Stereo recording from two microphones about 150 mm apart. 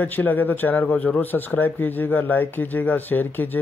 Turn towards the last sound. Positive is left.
turn(degrees=10)  # may be behind; listen again after turning